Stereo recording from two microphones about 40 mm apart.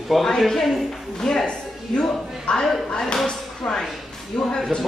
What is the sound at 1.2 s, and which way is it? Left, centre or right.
A woman's voice, centre.